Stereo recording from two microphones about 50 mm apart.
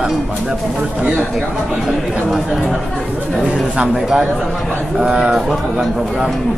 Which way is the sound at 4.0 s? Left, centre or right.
Centre.